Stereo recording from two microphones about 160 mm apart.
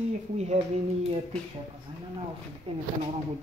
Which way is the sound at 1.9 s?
30° right (ahead or behind).